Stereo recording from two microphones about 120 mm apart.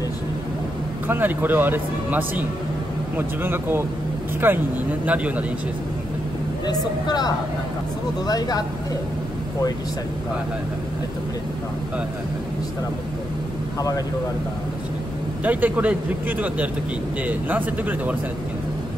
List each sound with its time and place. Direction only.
1.0 s speech: 15° right (ahead or behind)
6.6 s speech: 35° left (ahead or behind)
13.7 s speech: 30° left (ahead or behind)
15.4 s speech: 15° right (ahead or behind)